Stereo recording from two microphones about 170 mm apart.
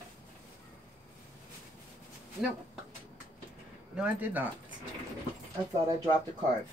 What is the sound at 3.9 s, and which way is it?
Speech, 10° right (ahead or behind).